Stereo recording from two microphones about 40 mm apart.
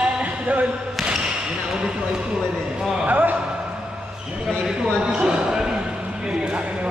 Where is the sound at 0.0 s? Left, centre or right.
Right.